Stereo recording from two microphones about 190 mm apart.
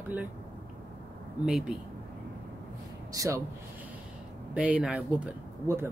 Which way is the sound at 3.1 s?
15° right (ahead or behind).